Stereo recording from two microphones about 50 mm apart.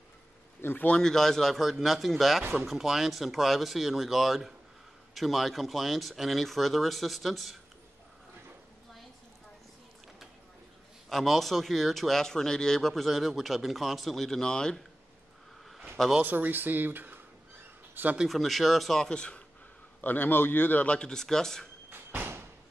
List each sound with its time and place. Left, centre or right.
0.6 s speech: left
0.9 s speech: centre
11.1 s speech: centre
16.2 s speech: right
18.3 s speech: centre
19.1 s speech: left
20.0 s a man's voice: left
20.8 s speech: left
21.1 s speech: centre
21.9 s a sound: right